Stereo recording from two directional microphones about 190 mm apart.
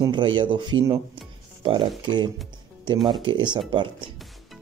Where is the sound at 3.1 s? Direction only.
25° right (ahead or behind).